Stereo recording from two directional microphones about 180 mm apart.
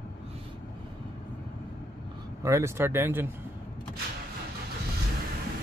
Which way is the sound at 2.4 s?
15° right (ahead or behind).